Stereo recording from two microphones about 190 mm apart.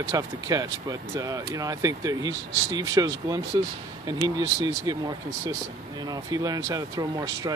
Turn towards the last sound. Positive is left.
turn(degrees=-20)  # may be behind; listen again after turning